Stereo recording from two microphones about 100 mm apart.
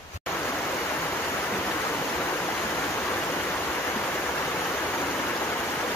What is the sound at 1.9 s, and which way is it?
Stream, 20° left (ahead or behind).